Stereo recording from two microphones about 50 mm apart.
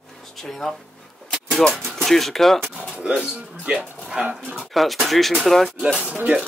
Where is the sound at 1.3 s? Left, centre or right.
Centre.